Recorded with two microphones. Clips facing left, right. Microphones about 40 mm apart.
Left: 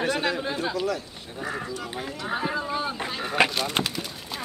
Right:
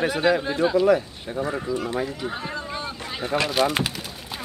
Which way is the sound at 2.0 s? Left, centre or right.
Centre.